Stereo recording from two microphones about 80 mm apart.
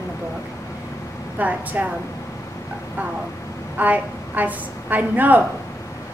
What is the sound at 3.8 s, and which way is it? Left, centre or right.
A woman's voice, right.